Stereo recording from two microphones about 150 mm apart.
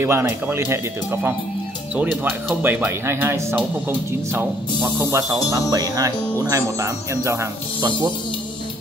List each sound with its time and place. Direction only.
0.0 s speech: 15° right (ahead or behind)